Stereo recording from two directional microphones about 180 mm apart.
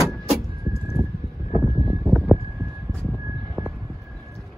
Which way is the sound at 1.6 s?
Centre (ahead or behind).